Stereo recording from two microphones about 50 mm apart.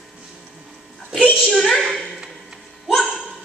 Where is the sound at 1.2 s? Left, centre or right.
Centre.